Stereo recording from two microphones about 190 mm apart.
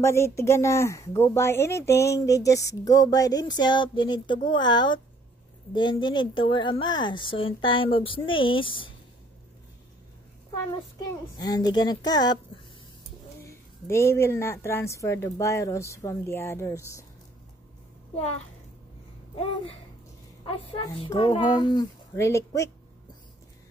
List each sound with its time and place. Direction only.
0.0 s speech: 15° left (ahead or behind)
11.3 s speech: 20° left (ahead or behind)
13.5 s speech: 15° left (ahead or behind)
20.4 s speech: 30° left (ahead or behind)